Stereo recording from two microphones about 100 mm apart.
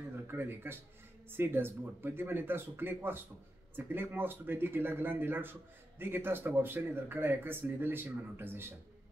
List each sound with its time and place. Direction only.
0.3 s speech: 20° right (ahead or behind)